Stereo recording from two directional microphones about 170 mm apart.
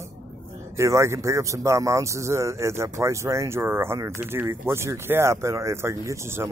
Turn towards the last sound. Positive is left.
turn(degrees=-15)  # may be behind; listen again after turning